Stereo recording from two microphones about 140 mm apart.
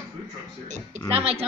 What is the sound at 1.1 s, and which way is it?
Speech, 45° right (ahead or behind).